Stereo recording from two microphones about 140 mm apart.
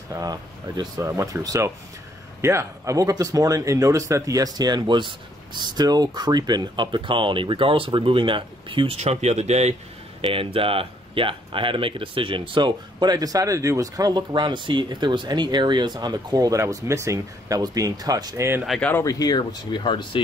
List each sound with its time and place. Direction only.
0.1 s speech: 25° right (ahead or behind)
18.8 s speech: 10° left (ahead or behind)
19.0 s speech: 25° left (ahead or behind)